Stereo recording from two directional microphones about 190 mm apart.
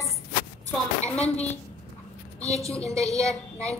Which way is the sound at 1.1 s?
5° left (ahead or behind).